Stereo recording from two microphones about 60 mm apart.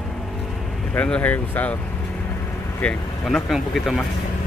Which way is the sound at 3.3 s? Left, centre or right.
Centre.